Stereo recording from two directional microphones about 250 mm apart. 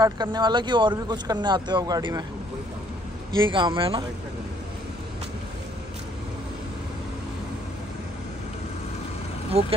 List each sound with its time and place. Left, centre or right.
0.0 s speech: centre
3.3 s speech: centre
9.5 s speech: right